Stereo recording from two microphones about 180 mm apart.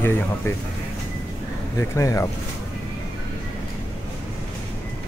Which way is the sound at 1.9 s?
15° left (ahead or behind).